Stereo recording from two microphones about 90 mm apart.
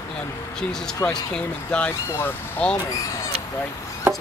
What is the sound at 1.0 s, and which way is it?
Speech, 25° left (ahead or behind).